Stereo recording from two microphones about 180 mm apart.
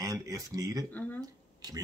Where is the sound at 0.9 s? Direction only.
10° left (ahead or behind).